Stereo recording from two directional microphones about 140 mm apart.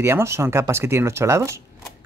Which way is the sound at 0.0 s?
20° right (ahead or behind).